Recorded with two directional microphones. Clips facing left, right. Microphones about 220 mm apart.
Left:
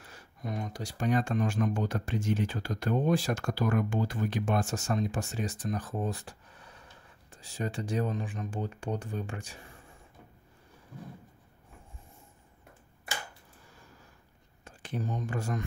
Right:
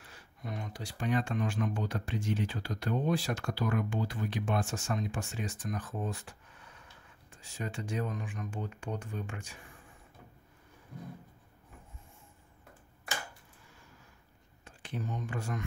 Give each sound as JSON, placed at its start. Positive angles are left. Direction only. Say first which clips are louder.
{"t": 0.0, "sound": "speech", "louder": "left 4 dB", "side_deg": 40}
{"t": 14.6, "sound": "speech", "louder": "left 4 dB", "side_deg": 45}